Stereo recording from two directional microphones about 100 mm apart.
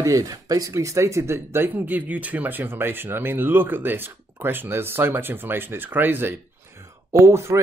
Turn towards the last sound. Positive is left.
turn(degrees=-25)  # may be behind; listen again after turning